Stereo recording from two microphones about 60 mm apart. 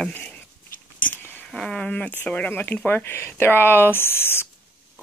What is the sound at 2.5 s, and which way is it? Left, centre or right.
Speech, left.